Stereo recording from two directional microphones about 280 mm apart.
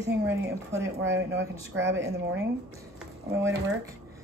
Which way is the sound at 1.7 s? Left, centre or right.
Right.